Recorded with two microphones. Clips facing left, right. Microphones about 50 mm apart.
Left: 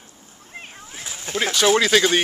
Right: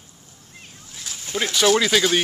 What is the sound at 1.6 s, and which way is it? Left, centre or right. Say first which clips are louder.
Speech: left 1 dB; centre.